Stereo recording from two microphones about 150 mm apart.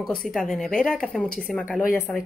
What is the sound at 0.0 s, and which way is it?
Speech, 5° left (ahead or behind).